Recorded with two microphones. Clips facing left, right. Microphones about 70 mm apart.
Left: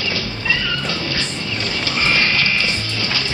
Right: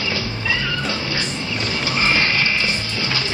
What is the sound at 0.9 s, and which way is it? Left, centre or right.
Music, centre.